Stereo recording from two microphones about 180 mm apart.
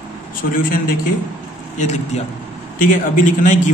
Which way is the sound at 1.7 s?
40° left (ahead or behind).